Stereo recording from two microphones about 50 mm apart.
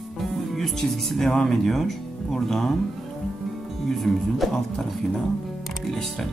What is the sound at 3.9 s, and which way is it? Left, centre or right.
Speech, centre.